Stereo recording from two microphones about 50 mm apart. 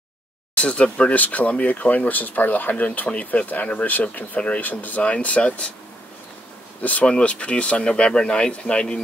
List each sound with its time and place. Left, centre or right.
0.6 s speech: left
6.8 s speech: left